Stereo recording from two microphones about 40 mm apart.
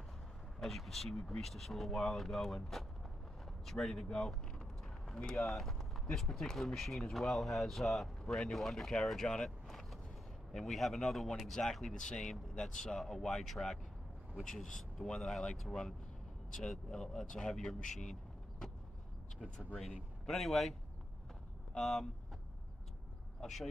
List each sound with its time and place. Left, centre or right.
0.6 s speech: centre
4.6 s run: centre
5.3 s speech: centre
9.7 s vehicle: centre
10.5 s speech: centre
11.9 s speech: centre
20.2 s speech: centre
21.7 s speech: centre
23.4 s speech: centre